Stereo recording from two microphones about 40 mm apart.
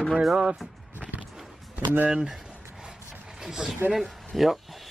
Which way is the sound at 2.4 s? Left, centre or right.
Centre.